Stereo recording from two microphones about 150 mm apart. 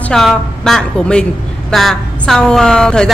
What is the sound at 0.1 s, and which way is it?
A woman's voice, 5° left (ahead or behind).